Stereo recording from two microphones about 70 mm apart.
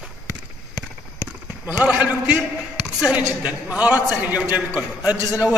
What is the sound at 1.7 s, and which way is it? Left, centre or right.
Speech, centre.